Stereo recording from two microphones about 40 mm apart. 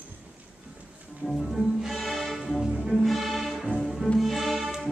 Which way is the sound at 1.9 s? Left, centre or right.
Centre.